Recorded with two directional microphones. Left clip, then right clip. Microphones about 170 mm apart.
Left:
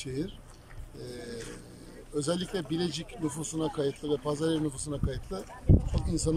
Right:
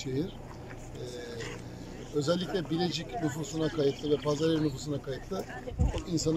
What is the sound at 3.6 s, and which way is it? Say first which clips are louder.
Speech: right 2 dB; 5° right (ahead or behind).